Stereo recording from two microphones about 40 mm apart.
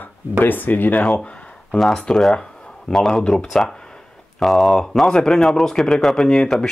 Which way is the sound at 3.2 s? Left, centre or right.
Centre.